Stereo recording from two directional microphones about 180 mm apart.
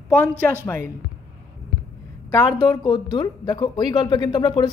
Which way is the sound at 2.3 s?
20° left (ahead or behind).